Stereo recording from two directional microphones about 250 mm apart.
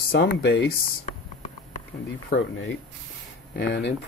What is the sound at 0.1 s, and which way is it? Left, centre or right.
Speech, left.